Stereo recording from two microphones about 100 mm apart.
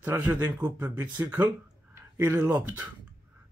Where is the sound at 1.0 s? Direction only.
45° right (ahead or behind).